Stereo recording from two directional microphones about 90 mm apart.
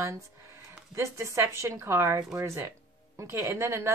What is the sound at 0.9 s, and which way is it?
A woman's voice, 30° right (ahead or behind).